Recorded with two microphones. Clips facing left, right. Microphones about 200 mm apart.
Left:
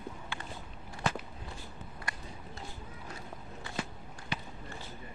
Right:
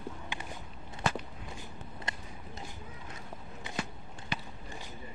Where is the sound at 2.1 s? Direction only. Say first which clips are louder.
Right 1 dB; 20° right (ahead or behind).